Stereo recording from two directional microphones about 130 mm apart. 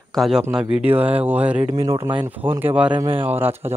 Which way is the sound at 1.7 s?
30° right (ahead or behind).